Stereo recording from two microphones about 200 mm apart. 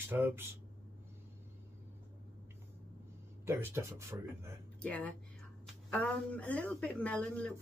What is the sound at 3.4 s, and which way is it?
Speech, 15° right (ahead or behind).